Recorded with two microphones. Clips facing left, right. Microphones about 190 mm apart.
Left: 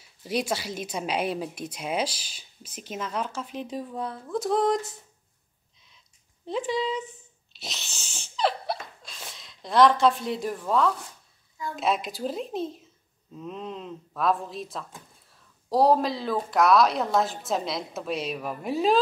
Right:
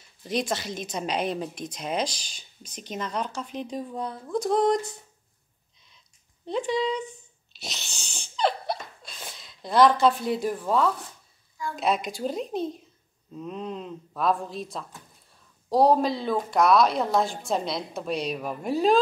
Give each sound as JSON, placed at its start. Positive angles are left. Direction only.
{"t": 0.0, "sound": "a woman's voice", "side_deg": 10}
{"t": 6.4, "sound": "a woman's voice", "side_deg": 0}